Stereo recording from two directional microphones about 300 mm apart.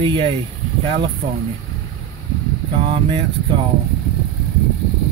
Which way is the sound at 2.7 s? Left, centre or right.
Centre.